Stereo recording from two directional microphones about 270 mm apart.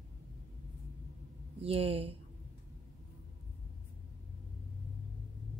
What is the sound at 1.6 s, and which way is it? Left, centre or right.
Speech, right.